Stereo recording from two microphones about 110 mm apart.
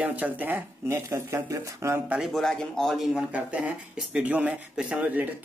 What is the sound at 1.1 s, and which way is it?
Speech, 25° right (ahead or behind).